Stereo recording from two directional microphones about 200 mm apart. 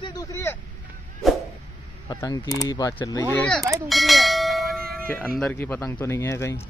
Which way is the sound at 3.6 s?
15° right (ahead or behind).